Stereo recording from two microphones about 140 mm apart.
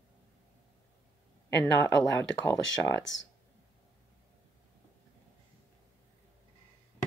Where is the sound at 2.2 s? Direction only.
20° left (ahead or behind).